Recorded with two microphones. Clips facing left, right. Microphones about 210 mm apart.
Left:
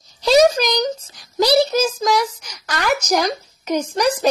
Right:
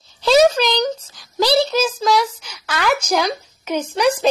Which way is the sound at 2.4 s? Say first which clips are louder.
Right 1 dB; 5° right (ahead or behind).